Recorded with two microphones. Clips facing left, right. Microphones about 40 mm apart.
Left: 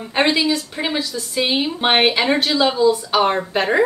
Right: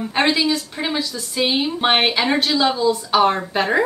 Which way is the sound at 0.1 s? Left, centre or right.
Centre.